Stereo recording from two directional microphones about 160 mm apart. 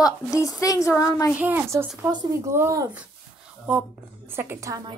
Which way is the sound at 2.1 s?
30° right (ahead or behind).